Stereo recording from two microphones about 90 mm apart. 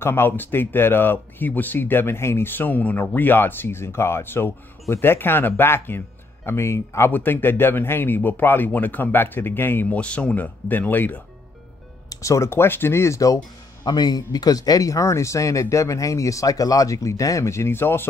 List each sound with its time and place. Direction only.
0.0 s speech: 25° left (ahead or behind)
12.1 s speech: 35° left (ahead or behind)
13.8 s speech: 55° left (ahead or behind); by 18.0 s 25° left (ahead or behind)